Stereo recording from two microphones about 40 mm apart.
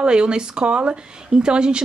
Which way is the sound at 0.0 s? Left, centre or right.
Right.